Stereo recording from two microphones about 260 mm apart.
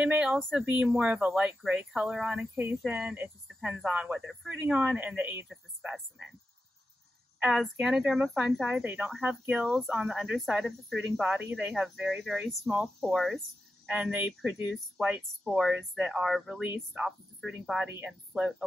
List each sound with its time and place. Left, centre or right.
0.0 s speech: centre
7.3 s speech: centre